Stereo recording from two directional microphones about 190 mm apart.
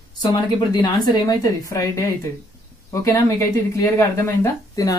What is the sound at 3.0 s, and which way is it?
Speech, 15° left (ahead or behind).